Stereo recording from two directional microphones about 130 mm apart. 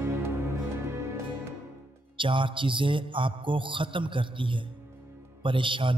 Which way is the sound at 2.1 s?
40° right (ahead or behind).